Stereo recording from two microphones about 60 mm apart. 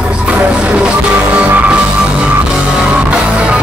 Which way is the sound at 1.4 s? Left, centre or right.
Right.